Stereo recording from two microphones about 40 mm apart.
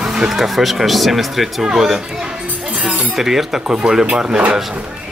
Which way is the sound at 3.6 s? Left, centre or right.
Centre.